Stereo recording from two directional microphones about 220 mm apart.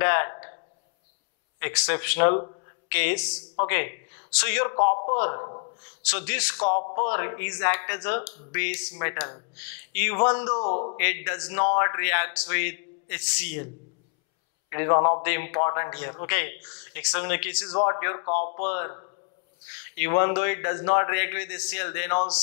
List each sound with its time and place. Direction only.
0.0 s a sound: 15° left (ahead or behind)
1.6 s a man's voice: 15° left (ahead or behind)
4.7 s a man's voice: 25° left (ahead or behind)
6.0 s a man's voice: 10° left (ahead or behind)
10.4 s a man's voice: 25° left (ahead or behind)
11.0 s a man's voice: 15° left (ahead or behind)
14.7 s a man's voice: 20° left (ahead or behind)
15.2 s a man's voice: 15° left (ahead or behind)
17.6 s a man's voice: 25° left (ahead or behind)
18.2 s speech: 40° left (ahead or behind)
18.7 s a man's voice: 20° left (ahead or behind)